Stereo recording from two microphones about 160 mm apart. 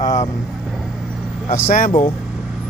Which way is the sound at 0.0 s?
20° left (ahead or behind).